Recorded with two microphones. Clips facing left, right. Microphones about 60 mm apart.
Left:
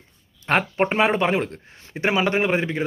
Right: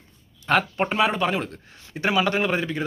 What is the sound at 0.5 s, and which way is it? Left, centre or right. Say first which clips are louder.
Speech: left 1 dB; left.